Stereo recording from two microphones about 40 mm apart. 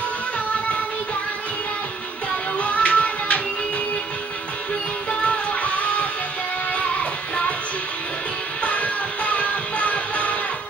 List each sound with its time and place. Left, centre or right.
2.6 s music: left
5.2 s music: left
8.6 s music: left